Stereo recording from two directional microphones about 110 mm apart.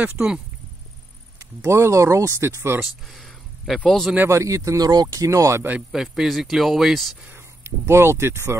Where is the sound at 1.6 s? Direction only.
25° right (ahead or behind).